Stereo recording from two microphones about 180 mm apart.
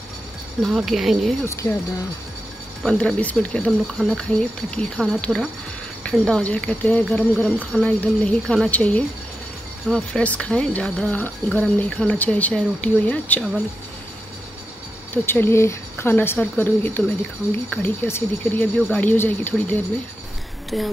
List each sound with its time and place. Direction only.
0.6 s speech: centre (ahead or behind)
1.4 s speech: 15° left (ahead or behind)
2.8 s speech: 5° left (ahead or behind)
15.2 s speech: 10° left (ahead or behind)
20.7 s speech: centre (ahead or behind)